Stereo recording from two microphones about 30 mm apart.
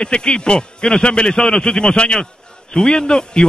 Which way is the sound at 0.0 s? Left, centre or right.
Left.